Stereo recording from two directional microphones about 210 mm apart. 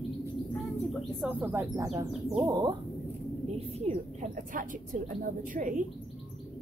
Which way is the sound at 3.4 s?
30° right (ahead or behind).